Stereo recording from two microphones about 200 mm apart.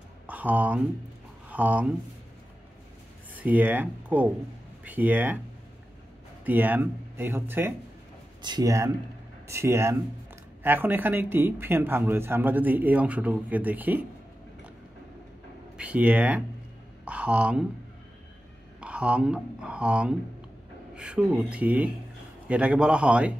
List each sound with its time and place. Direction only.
0.3 s speech: 10° right (ahead or behind)
3.4 s speech: 10° right (ahead or behind)
6.4 s speech: 10° right (ahead or behind)
8.4 s speech: 20° right (ahead or behind)
15.8 s speech: 5° right (ahead or behind)
18.8 s speech: 5° right (ahead or behind)